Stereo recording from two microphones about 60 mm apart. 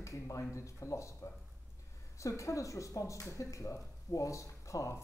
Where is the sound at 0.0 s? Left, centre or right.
Left.